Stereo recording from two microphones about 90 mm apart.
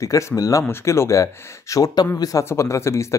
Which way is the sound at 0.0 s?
35° left (ahead or behind).